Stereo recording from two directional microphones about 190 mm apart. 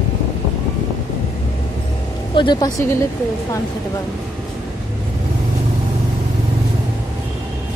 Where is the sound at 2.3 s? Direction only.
25° left (ahead or behind).